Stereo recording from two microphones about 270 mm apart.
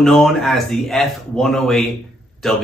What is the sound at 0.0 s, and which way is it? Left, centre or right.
A man's voice, centre.